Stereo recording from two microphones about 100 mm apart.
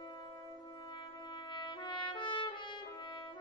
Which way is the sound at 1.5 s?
50° left (ahead or behind).